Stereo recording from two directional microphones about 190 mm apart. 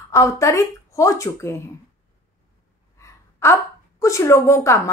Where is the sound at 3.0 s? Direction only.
15° left (ahead or behind).